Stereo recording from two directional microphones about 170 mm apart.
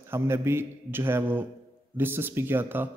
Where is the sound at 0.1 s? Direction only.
15° right (ahead or behind).